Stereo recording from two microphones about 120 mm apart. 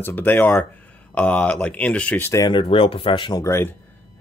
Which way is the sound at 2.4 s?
45° left (ahead or behind).